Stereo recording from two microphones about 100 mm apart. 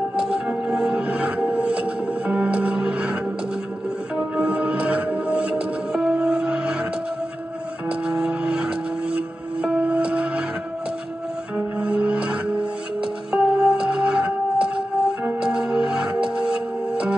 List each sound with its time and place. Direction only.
0.2 s music: 5° right (ahead or behind)
4.4 s music: 10° right (ahead or behind)
7.9 s music: 5° right (ahead or behind)
11.5 s music: 10° right (ahead or behind)